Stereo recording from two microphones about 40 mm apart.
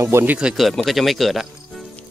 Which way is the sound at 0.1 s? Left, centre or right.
Right.